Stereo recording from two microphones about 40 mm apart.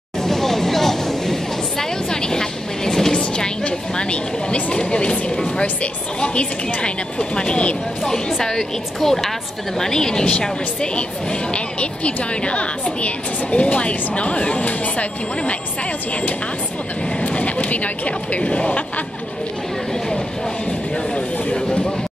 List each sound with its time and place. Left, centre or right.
0.2 s a sound: centre; by 4.7 s left
4.7 s a woman's voice: left
8.0 s a woman's voice: centre
11.5 s a woman's voice: left
17.3 s speech: left
21.1 s a sound: left